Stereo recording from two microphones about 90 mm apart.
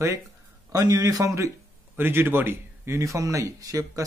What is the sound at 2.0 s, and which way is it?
Speech, 25° right (ahead or behind).